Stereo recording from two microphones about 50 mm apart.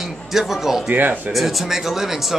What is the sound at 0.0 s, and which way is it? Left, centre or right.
Speech, centre.